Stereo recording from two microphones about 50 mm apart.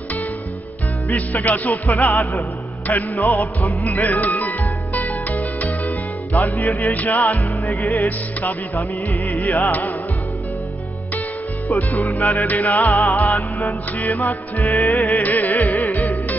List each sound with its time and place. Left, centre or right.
1.1 s music: left
1.9 s music: left
2.9 s music: left
11.9 s music: left